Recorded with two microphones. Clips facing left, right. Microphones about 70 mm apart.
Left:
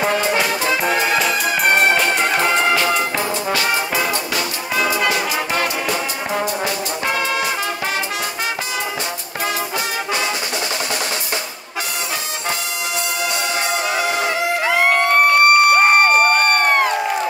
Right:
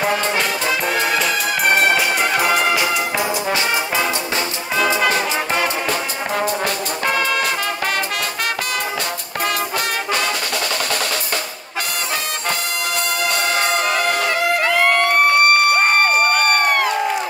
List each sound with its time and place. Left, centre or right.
0.9 s music: centre
13.2 s music: right
15.3 s a sound: left